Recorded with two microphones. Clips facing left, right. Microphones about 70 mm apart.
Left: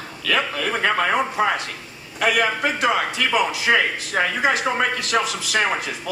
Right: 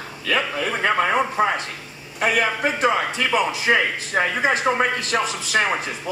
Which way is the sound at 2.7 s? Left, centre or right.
Right.